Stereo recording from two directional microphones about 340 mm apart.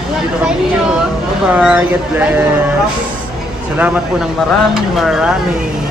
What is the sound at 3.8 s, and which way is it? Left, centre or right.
Speech, centre.